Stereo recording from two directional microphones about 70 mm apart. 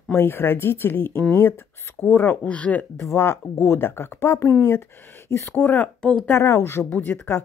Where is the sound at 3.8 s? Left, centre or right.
Left.